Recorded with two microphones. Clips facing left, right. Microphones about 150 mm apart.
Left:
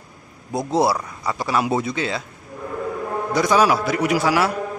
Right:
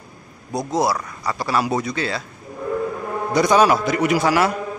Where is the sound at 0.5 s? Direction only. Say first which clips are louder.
Left 1 dB; 30° left (ahead or behind).